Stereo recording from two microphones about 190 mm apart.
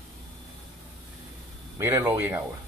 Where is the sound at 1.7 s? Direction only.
15° right (ahead or behind).